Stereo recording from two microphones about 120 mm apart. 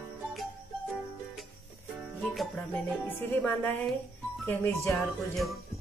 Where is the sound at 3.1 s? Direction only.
15° left (ahead or behind).